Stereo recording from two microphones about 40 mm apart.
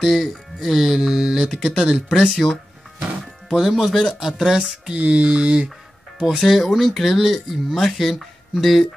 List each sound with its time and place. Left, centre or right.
0.0 s speech: centre
2.3 s speech: centre
3.5 s speech: centre
4.9 s mantra: right
6.4 s speech: centre